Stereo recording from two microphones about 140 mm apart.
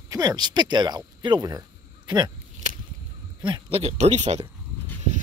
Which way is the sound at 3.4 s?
40° right (ahead or behind).